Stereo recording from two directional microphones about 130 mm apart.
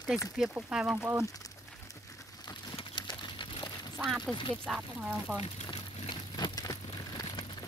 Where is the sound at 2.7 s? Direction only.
35° left (ahead or behind).